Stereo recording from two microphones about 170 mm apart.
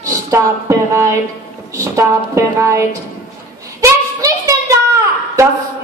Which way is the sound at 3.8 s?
20° right (ahead or behind).